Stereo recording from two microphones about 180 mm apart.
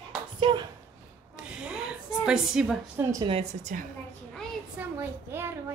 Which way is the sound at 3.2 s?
35° right (ahead or behind).